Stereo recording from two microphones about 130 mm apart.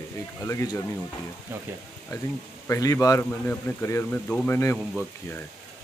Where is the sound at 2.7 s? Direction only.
25° left (ahead or behind).